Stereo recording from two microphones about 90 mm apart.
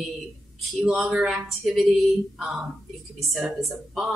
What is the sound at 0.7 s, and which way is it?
A woman's voice, 10° right (ahead or behind).